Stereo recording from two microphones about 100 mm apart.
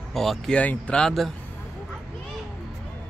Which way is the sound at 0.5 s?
15° left (ahead or behind).